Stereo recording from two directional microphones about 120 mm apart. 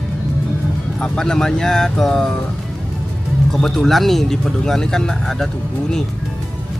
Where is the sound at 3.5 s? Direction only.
5° left (ahead or behind).